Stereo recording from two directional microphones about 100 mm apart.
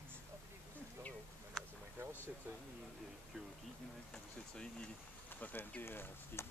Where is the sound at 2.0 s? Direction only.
20° right (ahead or behind).